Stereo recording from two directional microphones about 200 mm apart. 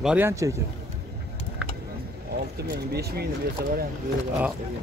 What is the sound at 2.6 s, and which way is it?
Speech, 55° right (ahead or behind).